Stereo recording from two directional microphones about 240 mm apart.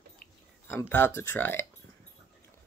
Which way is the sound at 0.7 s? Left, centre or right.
Centre.